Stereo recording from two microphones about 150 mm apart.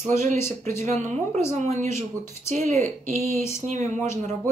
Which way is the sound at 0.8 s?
50° right (ahead or behind).